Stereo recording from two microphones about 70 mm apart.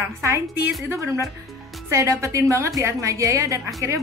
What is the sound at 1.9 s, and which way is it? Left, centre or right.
Speech, right.